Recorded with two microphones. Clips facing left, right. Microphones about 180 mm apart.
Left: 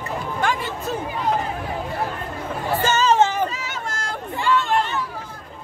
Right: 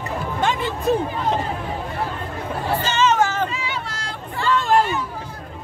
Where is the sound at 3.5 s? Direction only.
45° left (ahead or behind).